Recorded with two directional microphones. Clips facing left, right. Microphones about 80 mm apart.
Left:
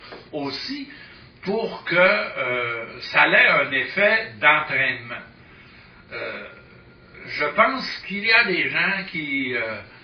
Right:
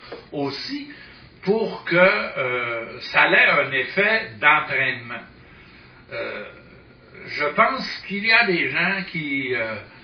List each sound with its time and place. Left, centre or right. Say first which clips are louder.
0.3 s speech: right 2 dB; centre